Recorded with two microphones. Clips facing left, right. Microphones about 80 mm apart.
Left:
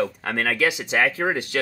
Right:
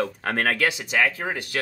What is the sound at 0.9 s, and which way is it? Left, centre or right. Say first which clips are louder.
Speech: left 2 dB; left.